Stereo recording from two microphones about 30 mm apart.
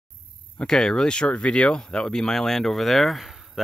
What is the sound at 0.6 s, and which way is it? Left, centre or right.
Speech, centre.